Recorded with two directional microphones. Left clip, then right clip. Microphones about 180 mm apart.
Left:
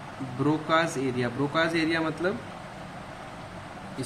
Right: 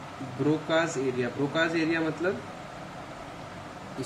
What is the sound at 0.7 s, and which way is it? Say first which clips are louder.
Speech: left 1 dB; 45° left (ahead or behind).